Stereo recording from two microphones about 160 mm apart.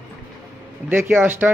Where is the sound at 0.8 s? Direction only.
10° right (ahead or behind).